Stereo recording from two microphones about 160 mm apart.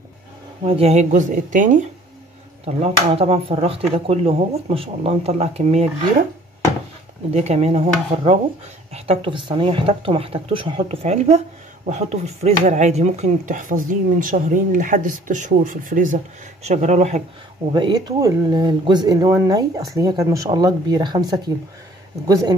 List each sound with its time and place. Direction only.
0.7 s speech: 40° right (ahead or behind)
2.6 s speech: 40° right (ahead or behind)
7.3 s speech: 40° right (ahead or behind)
16.6 s speech: 45° right (ahead or behind)
17.7 s speech: 25° right (ahead or behind)